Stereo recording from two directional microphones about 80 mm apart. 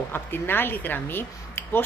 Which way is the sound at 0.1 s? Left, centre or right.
Left.